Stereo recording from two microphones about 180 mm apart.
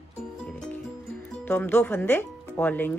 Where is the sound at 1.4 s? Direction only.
10° left (ahead or behind).